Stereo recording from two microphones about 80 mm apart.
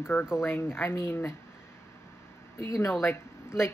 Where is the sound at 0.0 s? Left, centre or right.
Left.